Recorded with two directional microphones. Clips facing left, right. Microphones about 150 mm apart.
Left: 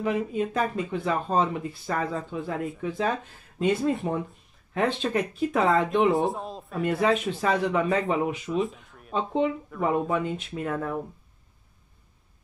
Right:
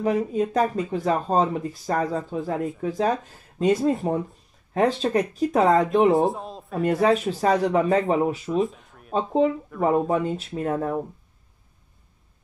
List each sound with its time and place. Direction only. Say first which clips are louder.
0.0 s speech: right 4 dB; 40° right (ahead or behind)
6.1 s speech: right 4 dB; centre (ahead or behind)
6.8 s speech: right 4 dB; 40° right (ahead or behind)
8.5 s a sound: right 3 dB; centre (ahead or behind)
9.1 s speech: right 4 dB; 40° right (ahead or behind)